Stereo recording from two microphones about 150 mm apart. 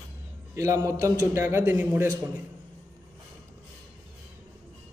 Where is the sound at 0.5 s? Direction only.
20° right (ahead or behind).